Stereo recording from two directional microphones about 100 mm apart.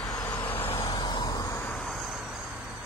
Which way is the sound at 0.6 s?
65° left (ahead or behind).